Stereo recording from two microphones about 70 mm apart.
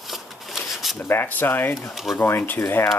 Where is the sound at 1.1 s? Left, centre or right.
Left.